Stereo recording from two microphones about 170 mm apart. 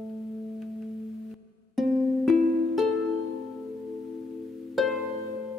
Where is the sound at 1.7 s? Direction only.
Centre (ahead or behind).